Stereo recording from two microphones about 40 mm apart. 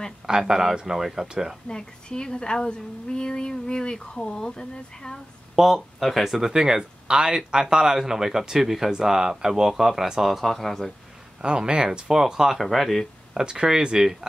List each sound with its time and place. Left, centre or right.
0.3 s speech: centre
1.7 s a woman's voice: centre
5.6 s speech: centre
6.4 s speech: centre
10.4 s speech: centre
11.4 s speech: right
12.1 s speech: centre
13.3 s speech: centre